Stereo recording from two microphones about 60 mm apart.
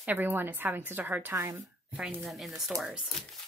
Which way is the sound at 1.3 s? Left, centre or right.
Right.